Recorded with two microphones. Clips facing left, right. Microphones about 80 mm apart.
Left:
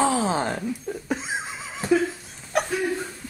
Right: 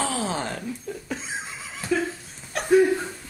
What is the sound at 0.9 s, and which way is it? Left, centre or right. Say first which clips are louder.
Laughter: left 3 dB; left.